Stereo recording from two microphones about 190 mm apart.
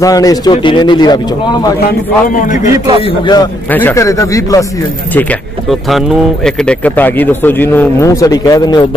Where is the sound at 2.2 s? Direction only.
40° left (ahead or behind).